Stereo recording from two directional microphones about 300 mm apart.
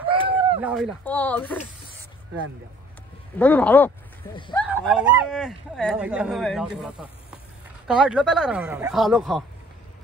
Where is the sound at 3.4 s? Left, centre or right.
Centre.